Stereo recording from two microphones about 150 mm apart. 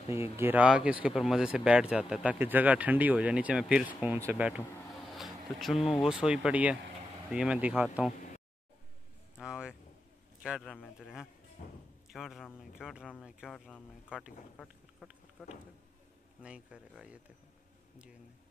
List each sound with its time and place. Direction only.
0.1 s speech: 15° right (ahead or behind)
9.4 s a sound: 5° right (ahead or behind)
10.4 s a man's voice: 5° right (ahead or behind)
11.6 s speech: 55° left (ahead or behind)
12.1 s speech: centre (ahead or behind)